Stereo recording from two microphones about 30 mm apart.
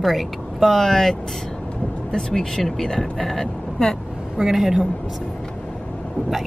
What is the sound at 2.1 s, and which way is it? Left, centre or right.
Speech, left.